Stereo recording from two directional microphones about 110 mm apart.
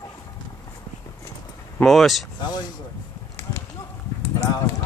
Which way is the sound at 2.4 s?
40° left (ahead or behind).